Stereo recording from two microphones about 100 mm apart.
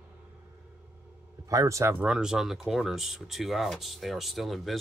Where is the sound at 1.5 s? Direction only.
35° right (ahead or behind).